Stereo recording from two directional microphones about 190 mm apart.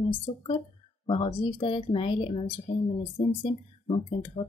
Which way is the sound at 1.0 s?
30° left (ahead or behind).